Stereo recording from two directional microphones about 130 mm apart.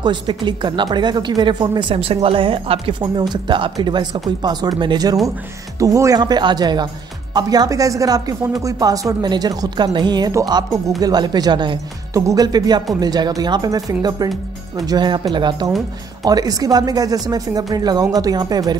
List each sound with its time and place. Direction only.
0.0 s a woman's voice: 35° right (ahead or behind)